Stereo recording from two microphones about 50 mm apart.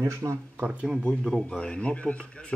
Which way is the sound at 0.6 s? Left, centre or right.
Right.